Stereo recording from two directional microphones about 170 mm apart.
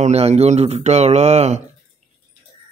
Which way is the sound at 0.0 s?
40° right (ahead or behind).